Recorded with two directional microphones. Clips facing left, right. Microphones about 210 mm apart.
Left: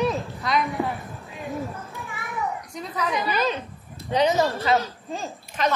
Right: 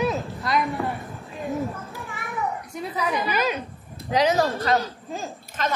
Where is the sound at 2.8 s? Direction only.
10° right (ahead or behind).